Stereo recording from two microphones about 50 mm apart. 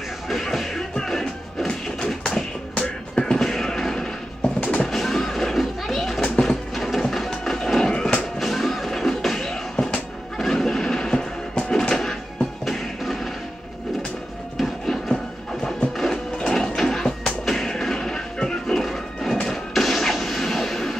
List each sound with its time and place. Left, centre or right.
0.3 s music: centre
4.6 s music: left
4.8 s music: centre
6.2 s a sound: centre
8.4 s music: centre
9.8 s music: centre
14.6 s music: centre